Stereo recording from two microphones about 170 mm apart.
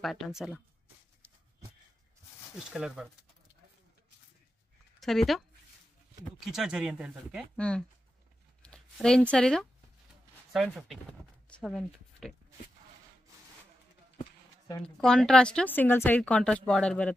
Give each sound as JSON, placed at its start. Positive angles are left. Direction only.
{"t": 0.0, "sound": "speech", "side_deg": 0}
{"t": 2.5, "sound": "speech", "side_deg": -5}
{"t": 5.0, "sound": "speech", "side_deg": 0}
{"t": 6.4, "sound": "speech", "side_deg": 0}
{"t": 14.8, "sound": "speech", "side_deg": 5}